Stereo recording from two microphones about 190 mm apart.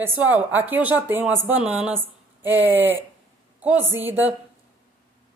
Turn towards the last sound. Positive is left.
turn(degrees=-10)  # may be behind; listen again after turning